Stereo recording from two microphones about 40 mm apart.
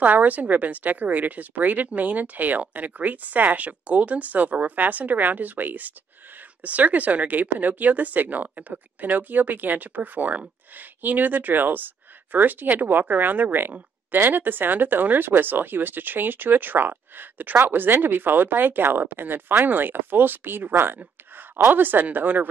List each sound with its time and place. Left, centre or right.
0.0 s speech: right